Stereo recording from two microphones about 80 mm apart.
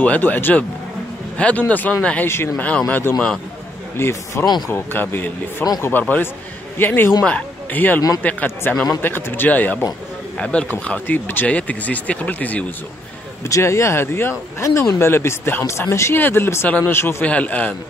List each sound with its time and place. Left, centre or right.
0.0 s speech: centre
2.2 s speech: left
2.5 s a man's voice: centre
3.9 s a man's voice: left
13.4 s speech: left
16.6 s speech: centre
16.9 s speech: left
17.2 s speech: centre